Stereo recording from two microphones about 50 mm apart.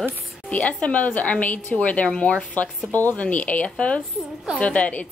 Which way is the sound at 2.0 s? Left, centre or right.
Centre.